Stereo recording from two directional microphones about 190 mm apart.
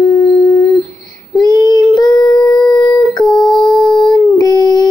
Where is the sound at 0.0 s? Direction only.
20° left (ahead or behind).